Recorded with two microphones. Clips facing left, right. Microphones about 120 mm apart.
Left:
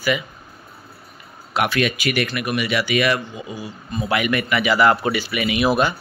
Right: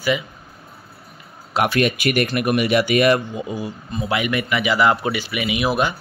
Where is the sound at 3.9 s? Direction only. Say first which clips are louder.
Left 1 dB; 20° right (ahead or behind).